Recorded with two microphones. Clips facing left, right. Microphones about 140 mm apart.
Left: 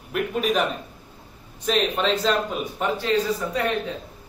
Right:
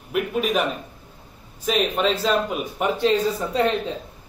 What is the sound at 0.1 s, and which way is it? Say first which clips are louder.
Speech: right 1 dB; 5° right (ahead or behind).